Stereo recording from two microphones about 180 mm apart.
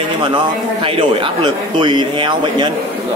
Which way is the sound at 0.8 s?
30° right (ahead or behind).